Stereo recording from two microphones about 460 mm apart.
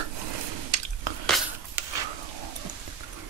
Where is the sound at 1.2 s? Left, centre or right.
Centre.